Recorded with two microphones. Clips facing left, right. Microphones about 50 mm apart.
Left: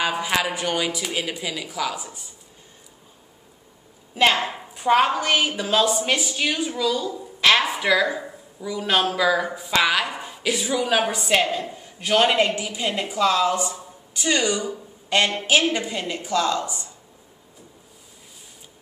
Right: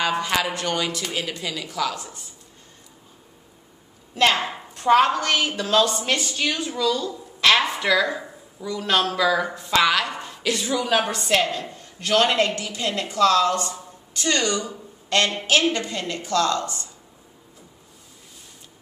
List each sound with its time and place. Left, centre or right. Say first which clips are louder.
0.0 s a woman's voice: even; centre
4.1 s a woman's voice: left 1 dB; centre